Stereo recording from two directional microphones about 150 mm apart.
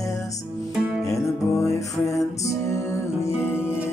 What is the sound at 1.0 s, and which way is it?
Music, 20° left (ahead or behind).